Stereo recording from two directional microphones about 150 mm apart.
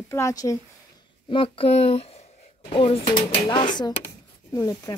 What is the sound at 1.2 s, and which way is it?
Speech, 35° left (ahead or behind).